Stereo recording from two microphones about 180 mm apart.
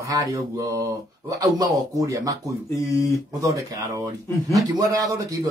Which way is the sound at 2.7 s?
15° left (ahead or behind).